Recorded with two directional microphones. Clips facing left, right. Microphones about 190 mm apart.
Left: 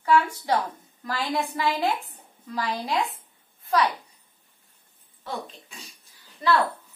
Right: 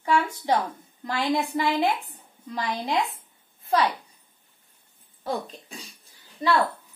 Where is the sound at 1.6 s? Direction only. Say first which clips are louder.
Right 1 dB; 15° right (ahead or behind).